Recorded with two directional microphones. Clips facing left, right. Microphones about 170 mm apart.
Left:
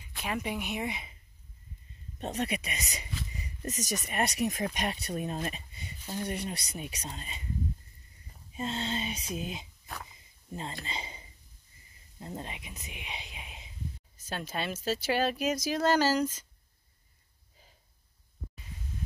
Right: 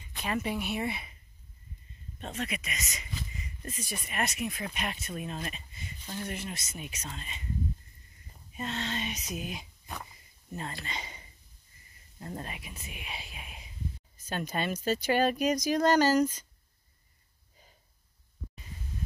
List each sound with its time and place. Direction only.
0.0 s a sound: 5° left (ahead or behind)
0.4 s speech: 15° left (ahead or behind)
2.3 s speech: 35° left (ahead or behind)
5.9 s a sound: 10° left (ahead or behind)
6.2 s speech: 35° left (ahead or behind)
8.5 s speech: 30° left (ahead or behind)
12.4 s speech: 20° left (ahead or behind)
14.3 s speech: 5° left (ahead or behind)